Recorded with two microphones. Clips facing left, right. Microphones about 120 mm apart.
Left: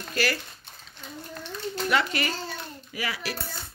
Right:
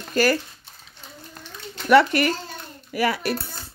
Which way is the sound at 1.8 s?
60° right (ahead or behind).